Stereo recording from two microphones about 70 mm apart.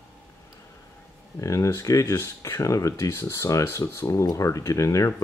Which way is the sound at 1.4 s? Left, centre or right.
Left.